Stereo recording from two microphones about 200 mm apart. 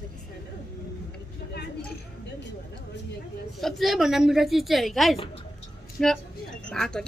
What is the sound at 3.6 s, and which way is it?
A woman's voice, centre (ahead or behind).